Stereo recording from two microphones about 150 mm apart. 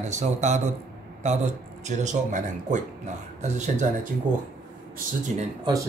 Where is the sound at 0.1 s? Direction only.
50° right (ahead or behind).